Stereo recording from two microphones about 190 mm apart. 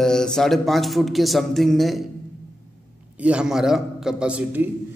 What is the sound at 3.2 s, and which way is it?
Speech, 5° right (ahead or behind).